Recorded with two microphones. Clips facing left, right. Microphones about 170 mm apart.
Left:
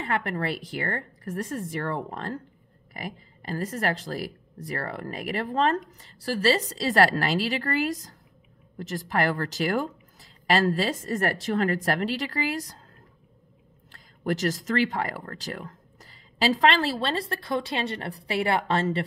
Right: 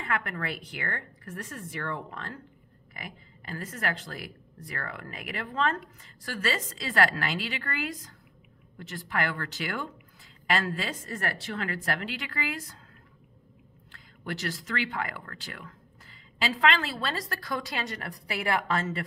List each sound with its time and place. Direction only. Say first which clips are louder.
0.0 s speech: left 5 dB; 30° left (ahead or behind)
13.9 s speech: left 9 dB; 40° left (ahead or behind)